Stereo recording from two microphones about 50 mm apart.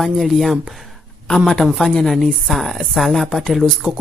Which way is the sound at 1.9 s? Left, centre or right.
Centre.